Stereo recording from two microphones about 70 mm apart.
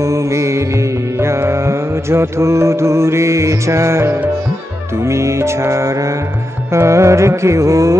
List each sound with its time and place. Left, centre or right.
0.0 s music: right